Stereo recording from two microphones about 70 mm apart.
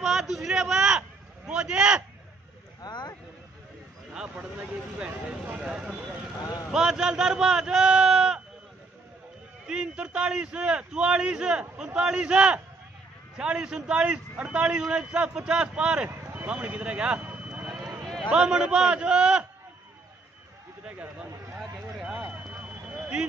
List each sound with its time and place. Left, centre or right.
0.0 s a sound: centre
1.5 s a man's voice: centre
2.8 s vehicle: left
4.1 s a man's voice: centre
9.7 s a man's voice: centre
16.1 s vehicle: right
16.4 s a sound: centre
18.3 s a man's voice: centre
21.5 s vehicle: centre